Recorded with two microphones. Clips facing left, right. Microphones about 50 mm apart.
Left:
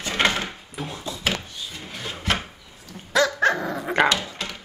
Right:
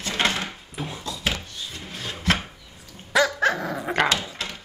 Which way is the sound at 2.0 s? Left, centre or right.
Centre.